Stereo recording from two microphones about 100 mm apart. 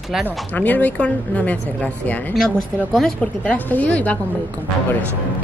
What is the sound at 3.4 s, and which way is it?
Speech, 15° left (ahead or behind).